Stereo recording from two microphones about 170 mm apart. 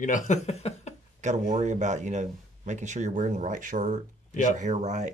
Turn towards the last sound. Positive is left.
turn(degrees=-45)  # may be behind; listen again after turning